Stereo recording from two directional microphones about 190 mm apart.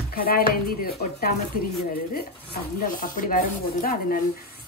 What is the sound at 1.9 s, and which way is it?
Speech, 55° left (ahead or behind).